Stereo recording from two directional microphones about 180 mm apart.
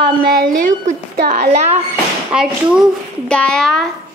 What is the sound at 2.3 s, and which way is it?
A woman's voice, 5° right (ahead or behind).